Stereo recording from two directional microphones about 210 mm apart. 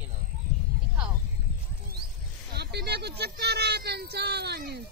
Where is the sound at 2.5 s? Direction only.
50° right (ahead or behind).